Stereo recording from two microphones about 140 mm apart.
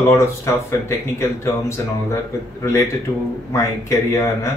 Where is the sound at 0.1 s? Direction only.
20° left (ahead or behind).